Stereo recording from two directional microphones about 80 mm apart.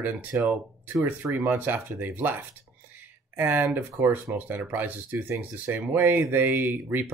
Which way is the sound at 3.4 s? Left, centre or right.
Right.